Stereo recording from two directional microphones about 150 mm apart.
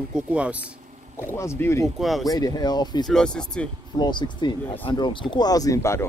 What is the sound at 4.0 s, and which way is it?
Speech, 30° left (ahead or behind).